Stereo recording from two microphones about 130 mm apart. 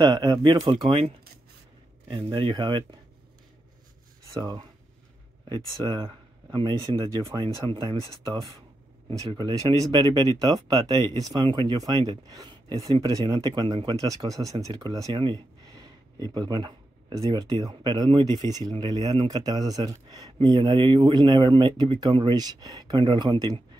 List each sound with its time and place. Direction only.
0.0 s speech: 30° right (ahead or behind)
2.0 s speech: 35° right (ahead or behind)
4.3 s speech: 30° right (ahead or behind)
5.8 s speech: 35° right (ahead or behind)
14.0 s speech: 25° right (ahead or behind)